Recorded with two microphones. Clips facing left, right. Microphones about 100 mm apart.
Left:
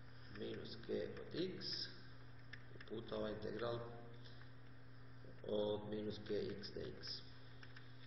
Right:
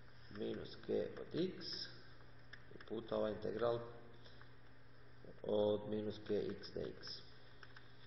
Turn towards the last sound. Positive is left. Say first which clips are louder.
# right 3 dB
turn(degrees=-30)  # may be behind; listen again after turning